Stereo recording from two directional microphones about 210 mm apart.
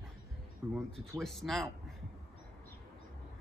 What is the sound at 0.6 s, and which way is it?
Speech, 15° right (ahead or behind).